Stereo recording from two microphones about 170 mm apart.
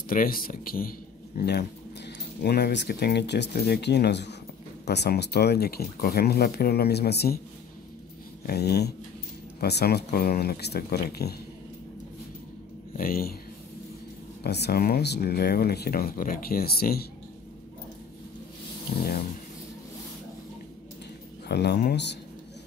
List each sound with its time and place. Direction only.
0.1 s speech: 55° left (ahead or behind)
1.4 s speech: 75° left (ahead or behind)
8.5 s speech: 75° left (ahead or behind)
12.9 s speech: 60° left (ahead or behind)
14.4 s speech: 75° left (ahead or behind)
21.5 s speech: 75° left (ahead or behind)